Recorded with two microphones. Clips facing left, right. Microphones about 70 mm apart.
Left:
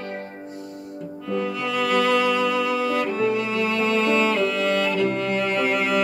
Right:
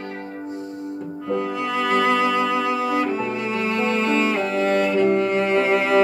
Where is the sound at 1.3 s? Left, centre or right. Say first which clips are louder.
Right 1 dB; right.